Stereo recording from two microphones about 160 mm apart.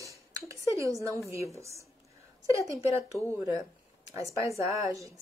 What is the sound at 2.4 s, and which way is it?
A woman's voice, 20° right (ahead or behind).